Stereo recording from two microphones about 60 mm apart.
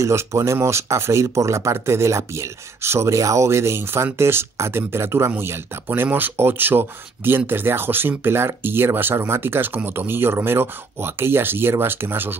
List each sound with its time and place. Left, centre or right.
0.0 s speech: right